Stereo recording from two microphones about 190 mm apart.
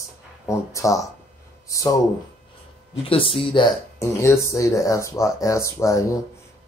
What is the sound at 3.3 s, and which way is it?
Speech, 25° left (ahead or behind).